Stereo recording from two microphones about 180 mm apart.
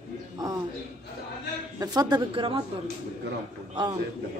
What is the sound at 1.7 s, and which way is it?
Speech, 20° right (ahead or behind).